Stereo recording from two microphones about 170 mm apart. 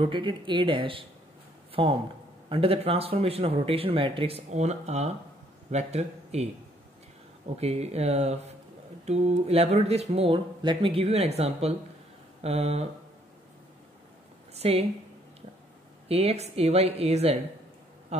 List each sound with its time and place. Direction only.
0.0 s speech: 30° right (ahead or behind)
7.5 s speech: 40° right (ahead or behind)
14.5 s a woman's voice: 35° right (ahead or behind)
16.1 s speech: 35° right (ahead or behind)